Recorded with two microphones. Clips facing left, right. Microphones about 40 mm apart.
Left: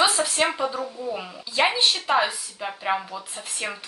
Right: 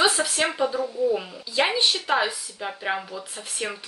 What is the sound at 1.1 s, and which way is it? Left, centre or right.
A woman's voice, centre.